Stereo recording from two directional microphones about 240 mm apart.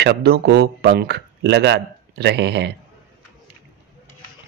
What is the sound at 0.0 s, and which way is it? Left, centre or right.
Speech, right.